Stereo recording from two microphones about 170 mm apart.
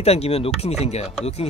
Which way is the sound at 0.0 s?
35° left (ahead or behind).